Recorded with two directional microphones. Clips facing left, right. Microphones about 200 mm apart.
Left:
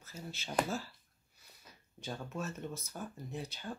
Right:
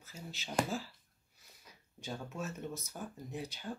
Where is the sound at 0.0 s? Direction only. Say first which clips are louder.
Left 2 dB; 15° right (ahead or behind).